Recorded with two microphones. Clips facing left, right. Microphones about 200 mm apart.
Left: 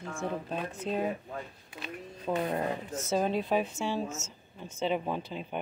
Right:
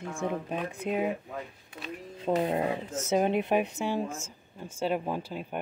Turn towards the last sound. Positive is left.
turn(degrees=-5)  # may be behind; listen again after turning